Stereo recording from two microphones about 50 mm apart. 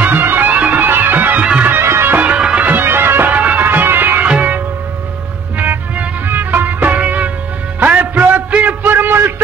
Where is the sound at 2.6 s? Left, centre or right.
Right.